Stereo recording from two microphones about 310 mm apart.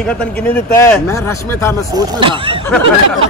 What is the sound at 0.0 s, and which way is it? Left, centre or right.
Speech, centre.